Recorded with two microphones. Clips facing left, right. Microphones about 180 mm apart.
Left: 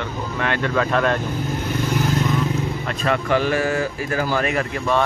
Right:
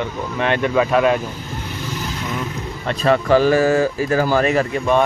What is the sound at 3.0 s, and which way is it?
Speech, 35° right (ahead or behind).